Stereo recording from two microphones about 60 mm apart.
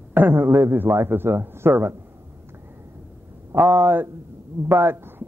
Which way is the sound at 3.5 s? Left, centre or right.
Right.